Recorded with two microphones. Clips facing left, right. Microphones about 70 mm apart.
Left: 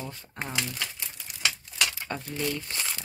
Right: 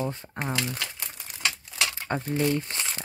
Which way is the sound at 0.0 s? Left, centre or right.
Right.